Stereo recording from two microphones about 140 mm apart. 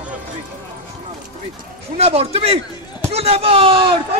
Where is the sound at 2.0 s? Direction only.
50° right (ahead or behind).